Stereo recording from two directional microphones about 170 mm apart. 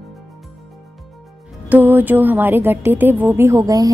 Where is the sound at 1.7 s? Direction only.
10° right (ahead or behind).